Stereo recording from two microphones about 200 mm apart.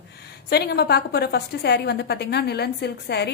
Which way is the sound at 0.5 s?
55° left (ahead or behind).